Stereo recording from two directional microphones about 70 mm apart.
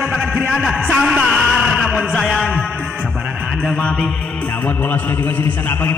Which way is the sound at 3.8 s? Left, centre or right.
Centre.